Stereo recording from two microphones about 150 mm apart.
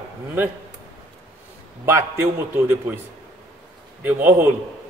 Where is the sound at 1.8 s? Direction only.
20° right (ahead or behind).